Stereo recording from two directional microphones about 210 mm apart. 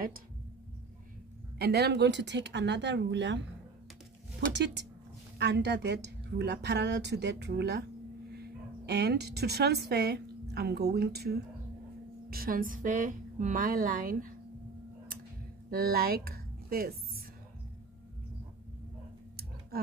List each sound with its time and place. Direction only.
1.6 s speech: 50° right (ahead or behind)
4.5 s a woman's voice: 55° right (ahead or behind)
15.7 s speech: 45° right (ahead or behind)